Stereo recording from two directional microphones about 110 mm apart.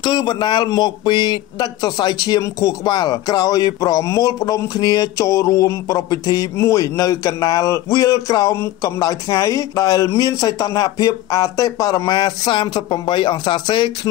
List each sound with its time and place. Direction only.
0.0 s a man's voice: 45° left (ahead or behind)